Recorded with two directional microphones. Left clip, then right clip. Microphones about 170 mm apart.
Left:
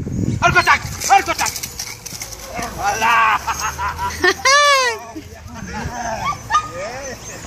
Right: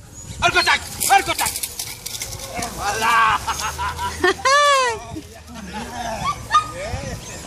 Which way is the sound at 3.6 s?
5° left (ahead or behind).